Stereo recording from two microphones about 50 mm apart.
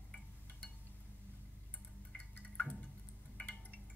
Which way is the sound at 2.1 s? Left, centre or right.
Left.